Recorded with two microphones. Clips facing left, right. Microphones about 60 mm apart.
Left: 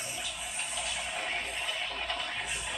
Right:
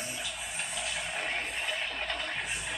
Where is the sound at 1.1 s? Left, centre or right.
Right.